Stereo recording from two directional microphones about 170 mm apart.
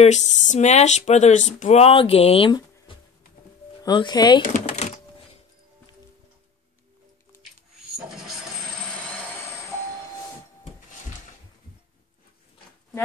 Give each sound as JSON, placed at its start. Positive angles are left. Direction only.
{"t": 0.0, "sound": "speech", "side_deg": 40}
{"t": 3.8, "sound": "speech", "side_deg": 25}
{"t": 4.4, "sound": "speech", "side_deg": 45}